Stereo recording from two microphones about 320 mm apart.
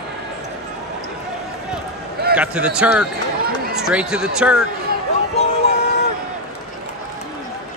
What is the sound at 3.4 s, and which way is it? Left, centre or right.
Run, right.